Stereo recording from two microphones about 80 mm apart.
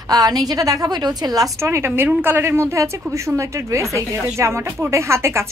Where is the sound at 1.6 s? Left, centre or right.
Right.